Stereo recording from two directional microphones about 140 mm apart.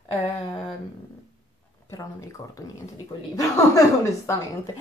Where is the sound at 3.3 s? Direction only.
25° left (ahead or behind).